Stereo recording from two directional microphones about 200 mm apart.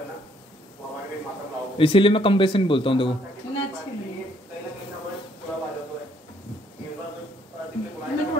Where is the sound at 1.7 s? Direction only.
25° left (ahead or behind).